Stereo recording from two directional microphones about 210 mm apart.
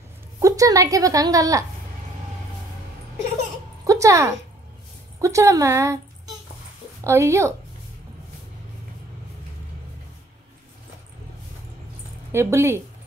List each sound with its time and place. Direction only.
0.4 s a woman's voice: 15° right (ahead or behind)
3.8 s a sound: 15° right (ahead or behind)
5.2 s a woman's voice: 15° right (ahead or behind)
7.1 s a woman's voice: 15° right (ahead or behind)
12.3 s a woman's voice: 10° right (ahead or behind)